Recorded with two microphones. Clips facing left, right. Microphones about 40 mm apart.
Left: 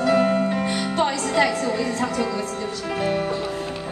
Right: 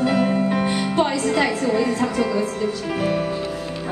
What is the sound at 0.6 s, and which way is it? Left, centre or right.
Music, centre.